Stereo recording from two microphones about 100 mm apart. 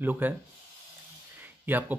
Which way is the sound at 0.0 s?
20° right (ahead or behind).